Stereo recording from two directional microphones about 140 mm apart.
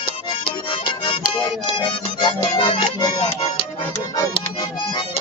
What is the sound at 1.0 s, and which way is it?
Music, 35° left (ahead or behind).